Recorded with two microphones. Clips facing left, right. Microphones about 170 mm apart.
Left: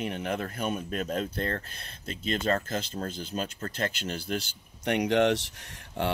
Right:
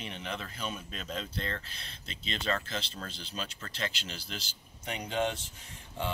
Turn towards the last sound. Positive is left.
turn(degrees=80)